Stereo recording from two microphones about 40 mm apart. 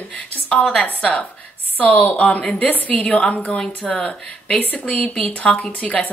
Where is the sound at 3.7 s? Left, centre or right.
Left.